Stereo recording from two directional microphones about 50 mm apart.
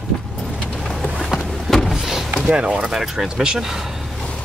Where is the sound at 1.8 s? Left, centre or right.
Centre.